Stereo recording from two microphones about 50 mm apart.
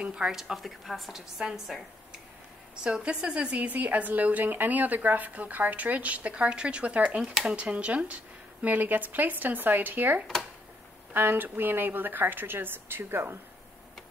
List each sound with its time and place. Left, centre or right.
0.0 s a woman's voice: centre
0.6 s a woman's voice: centre
2.7 s a woman's voice: centre
8.6 s a woman's voice: right